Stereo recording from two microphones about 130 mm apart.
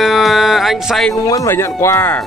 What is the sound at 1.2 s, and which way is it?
Speech, 25° left (ahead or behind).